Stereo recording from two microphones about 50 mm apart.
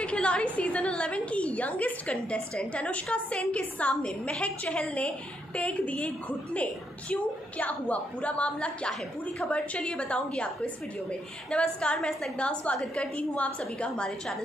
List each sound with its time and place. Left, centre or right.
0.0 s a woman's voice: left